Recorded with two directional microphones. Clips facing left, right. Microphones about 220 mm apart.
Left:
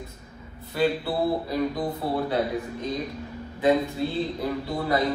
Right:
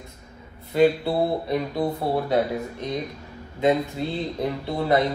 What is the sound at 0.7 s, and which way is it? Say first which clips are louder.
Speech: right 5 dB; 25° right (ahead or behind).